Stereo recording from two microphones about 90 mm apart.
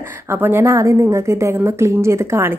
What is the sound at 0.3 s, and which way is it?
A woman's voice, 25° right (ahead or behind).